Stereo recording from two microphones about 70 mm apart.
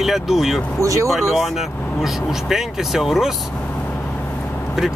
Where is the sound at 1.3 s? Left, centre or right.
Centre.